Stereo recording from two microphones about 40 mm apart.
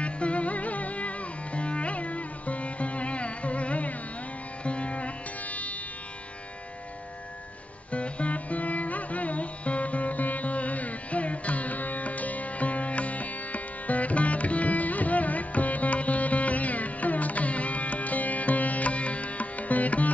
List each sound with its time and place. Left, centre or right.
0.0 s music: left
7.9 s music: left